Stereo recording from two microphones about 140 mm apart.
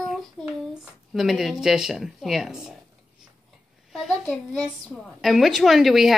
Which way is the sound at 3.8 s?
5° right (ahead or behind).